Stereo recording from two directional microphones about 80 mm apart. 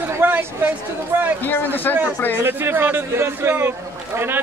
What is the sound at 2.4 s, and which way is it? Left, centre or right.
Speech, right.